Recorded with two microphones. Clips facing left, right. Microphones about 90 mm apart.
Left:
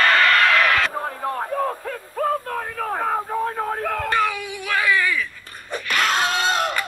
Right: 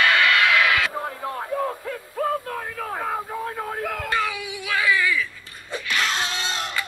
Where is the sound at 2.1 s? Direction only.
Centre (ahead or behind).